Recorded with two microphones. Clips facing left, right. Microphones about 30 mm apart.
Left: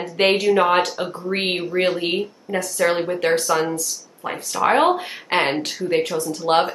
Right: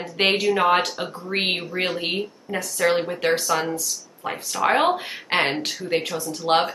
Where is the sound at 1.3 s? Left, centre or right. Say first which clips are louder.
Even; centre.